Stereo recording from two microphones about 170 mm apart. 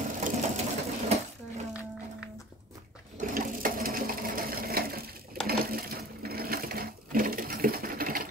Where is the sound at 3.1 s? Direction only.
50° right (ahead or behind).